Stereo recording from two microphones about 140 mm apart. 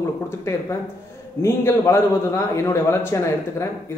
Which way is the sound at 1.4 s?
20° left (ahead or behind).